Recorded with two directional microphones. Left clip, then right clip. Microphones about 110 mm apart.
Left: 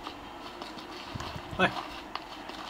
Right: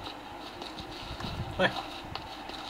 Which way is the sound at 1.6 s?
35° left (ahead or behind).